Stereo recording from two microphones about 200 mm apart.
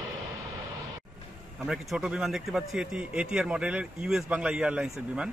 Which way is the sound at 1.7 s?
Centre (ahead or behind).